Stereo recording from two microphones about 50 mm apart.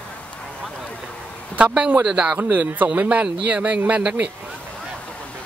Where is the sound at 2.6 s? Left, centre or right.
Right.